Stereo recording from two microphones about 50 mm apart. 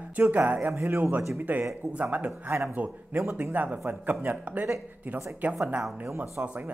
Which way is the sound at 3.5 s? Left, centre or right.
Right.